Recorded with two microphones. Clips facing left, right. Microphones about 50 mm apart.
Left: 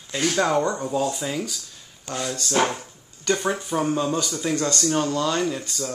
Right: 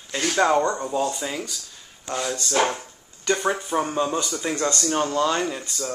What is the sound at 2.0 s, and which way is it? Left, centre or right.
Speech, centre.